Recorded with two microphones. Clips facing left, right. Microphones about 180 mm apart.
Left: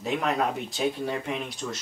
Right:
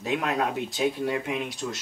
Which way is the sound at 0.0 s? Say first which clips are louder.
Even; centre (ahead or behind).